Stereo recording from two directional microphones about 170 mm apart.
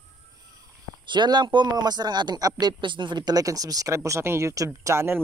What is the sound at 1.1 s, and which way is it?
Speech, 25° right (ahead or behind).